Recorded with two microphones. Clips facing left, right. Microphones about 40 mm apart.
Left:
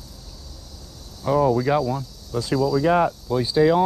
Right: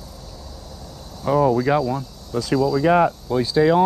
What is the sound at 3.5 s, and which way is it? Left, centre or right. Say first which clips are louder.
Speech: right 1 dB; right.